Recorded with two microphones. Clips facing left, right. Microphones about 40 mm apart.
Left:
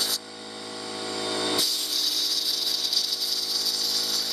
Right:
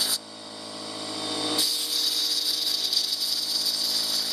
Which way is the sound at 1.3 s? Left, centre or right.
Centre.